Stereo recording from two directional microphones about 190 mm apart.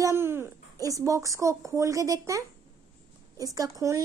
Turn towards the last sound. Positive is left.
turn(degrees=-15)  # may be behind; listen again after turning